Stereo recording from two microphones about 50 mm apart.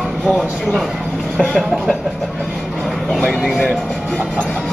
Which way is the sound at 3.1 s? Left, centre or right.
Centre.